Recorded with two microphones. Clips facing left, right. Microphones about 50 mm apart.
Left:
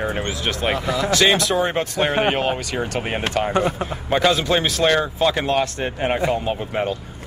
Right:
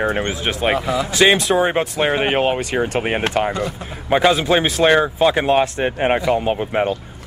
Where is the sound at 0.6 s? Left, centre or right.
Centre.